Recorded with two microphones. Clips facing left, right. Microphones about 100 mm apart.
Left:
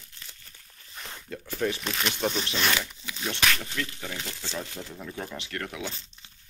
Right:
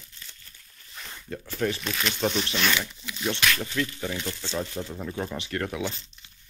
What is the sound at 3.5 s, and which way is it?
Speech, 20° right (ahead or behind).